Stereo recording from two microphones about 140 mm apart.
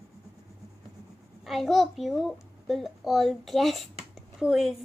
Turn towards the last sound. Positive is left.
turn(degrees=0)  # may be behind; listen again after turning